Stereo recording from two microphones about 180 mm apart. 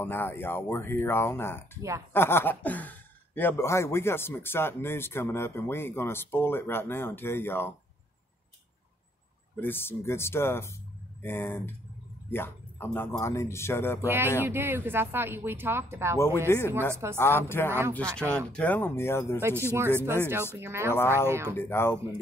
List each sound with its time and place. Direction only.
0.0 s speech: 10° left (ahead or behind)
1.8 s speech: 15° right (ahead or behind)
2.1 s speech: 10° left (ahead or behind)
9.6 s speech: 10° left (ahead or behind)
14.0 s speech: 10° right (ahead or behind)
16.4 s speech: 15° left (ahead or behind)
18.2 s speech: 15° right (ahead or behind)
18.5 s speech: 10° left (ahead or behind)
19.7 s speech: 15° right (ahead or behind)
21.5 s speech: 15° left (ahead or behind)